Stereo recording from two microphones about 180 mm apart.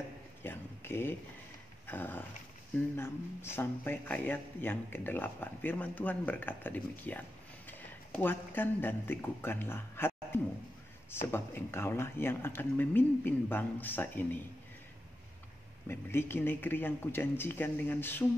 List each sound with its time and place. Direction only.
0.4 s a sound: 10° left (ahead or behind)
1.9 s speech: 10° left (ahead or behind)
15.9 s speech: 15° left (ahead or behind)